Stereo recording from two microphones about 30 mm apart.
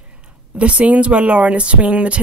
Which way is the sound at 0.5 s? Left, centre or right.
Right.